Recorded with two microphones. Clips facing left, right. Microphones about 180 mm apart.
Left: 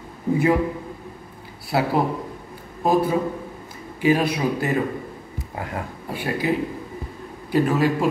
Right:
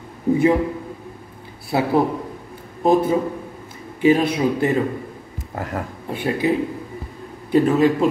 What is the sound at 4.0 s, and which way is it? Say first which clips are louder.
Speech: right 3 dB; 25° right (ahead or behind).